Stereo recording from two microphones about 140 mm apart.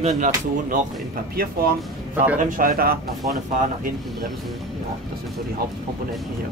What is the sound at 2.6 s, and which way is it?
Speech, 90° right.